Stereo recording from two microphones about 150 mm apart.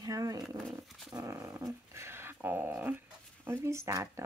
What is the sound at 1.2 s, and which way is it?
Dog, 15° right (ahead or behind).